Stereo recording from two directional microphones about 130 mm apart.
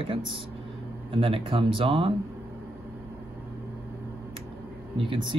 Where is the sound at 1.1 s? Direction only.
45° right (ahead or behind).